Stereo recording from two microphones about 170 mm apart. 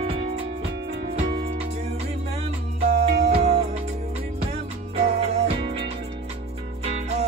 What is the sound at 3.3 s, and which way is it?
Music, 40° right (ahead or behind).